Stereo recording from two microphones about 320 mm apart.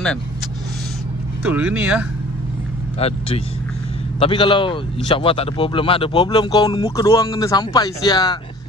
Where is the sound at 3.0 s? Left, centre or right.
Centre.